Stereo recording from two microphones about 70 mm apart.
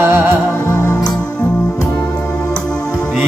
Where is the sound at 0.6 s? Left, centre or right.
Left.